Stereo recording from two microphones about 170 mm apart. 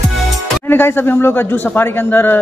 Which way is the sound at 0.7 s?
10° left (ahead or behind).